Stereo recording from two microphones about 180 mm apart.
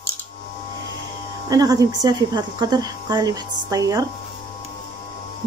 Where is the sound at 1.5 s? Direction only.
20° right (ahead or behind).